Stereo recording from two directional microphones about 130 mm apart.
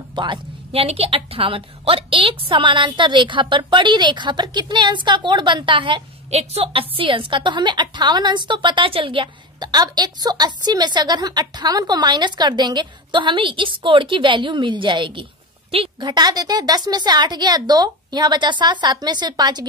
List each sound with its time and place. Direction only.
0.1 s a woman's voice: 35° right (ahead or behind)
6.3 s a woman's voice: 50° right (ahead or behind); by 19.6 s 35° right (ahead or behind)